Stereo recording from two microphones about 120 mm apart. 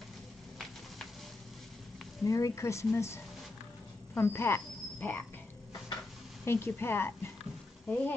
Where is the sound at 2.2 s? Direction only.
25° left (ahead or behind).